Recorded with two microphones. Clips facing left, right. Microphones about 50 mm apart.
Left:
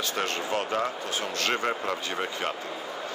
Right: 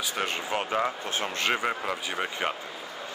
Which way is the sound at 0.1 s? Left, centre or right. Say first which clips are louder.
Left 1 dB; centre.